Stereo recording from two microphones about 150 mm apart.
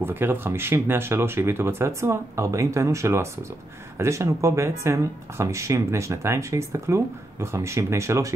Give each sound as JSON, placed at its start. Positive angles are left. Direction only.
{"t": 0.0, "sound": "speech", "side_deg": -15}